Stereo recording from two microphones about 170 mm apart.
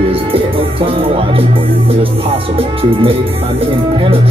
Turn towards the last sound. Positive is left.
turn(degrees=-35)  # may be behind; listen again after turning